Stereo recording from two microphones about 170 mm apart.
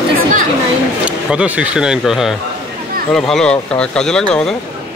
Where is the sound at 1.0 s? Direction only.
10° right (ahead or behind).